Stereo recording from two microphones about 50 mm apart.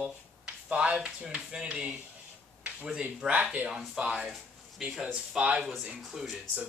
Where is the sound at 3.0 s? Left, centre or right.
Right.